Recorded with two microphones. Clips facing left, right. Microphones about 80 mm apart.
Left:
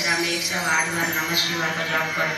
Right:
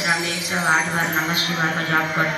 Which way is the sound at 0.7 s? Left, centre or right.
Right.